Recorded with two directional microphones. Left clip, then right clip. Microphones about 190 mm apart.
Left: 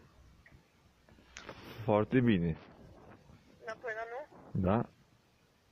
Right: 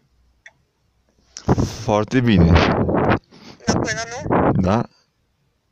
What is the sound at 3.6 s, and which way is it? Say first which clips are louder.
Sheep: right 18 dB; 65° right (ahead or behind).